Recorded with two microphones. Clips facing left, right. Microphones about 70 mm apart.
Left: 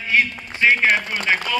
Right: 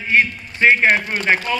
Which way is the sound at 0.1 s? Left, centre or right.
Right.